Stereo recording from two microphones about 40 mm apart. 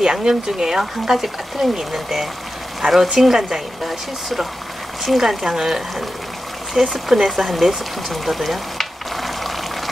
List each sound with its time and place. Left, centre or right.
0.0 s speech: centre
2.8 s speech: right
3.2 s speech: centre